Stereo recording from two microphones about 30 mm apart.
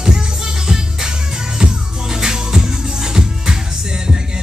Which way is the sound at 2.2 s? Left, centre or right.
Right.